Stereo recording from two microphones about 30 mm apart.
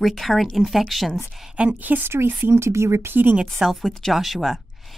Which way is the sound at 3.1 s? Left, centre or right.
Right.